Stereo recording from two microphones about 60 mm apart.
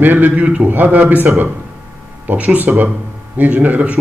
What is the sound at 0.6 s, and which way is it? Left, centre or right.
Speech, right.